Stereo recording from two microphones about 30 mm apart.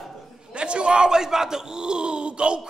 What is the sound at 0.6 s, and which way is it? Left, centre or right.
Speech, right.